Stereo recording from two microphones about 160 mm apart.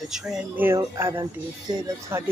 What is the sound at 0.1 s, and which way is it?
Speech, 5° right (ahead or behind).